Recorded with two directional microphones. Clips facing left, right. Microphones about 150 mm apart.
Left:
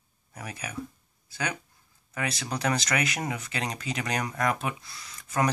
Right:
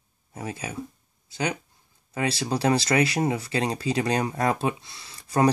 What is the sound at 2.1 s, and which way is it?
Speech, 30° right (ahead or behind).